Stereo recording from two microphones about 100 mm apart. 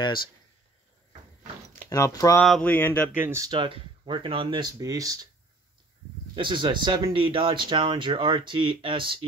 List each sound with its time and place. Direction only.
1.9 s speech: 35° left (ahead or behind)
2.6 s speech: 20° left (ahead or behind)
3.1 s speech: 20° right (ahead or behind)
3.5 s speech: 50° right (ahead or behind)
4.6 s speech: 40° right (ahead or behind)
6.3 s speech: 55° right (ahead or behind)